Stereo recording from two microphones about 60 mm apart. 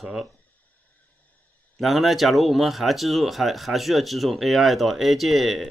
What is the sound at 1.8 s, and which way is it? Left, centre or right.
Speech, centre.